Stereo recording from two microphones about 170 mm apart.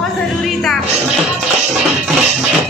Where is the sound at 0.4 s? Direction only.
Centre (ahead or behind).